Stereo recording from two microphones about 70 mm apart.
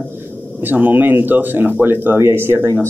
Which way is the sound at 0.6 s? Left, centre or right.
Right.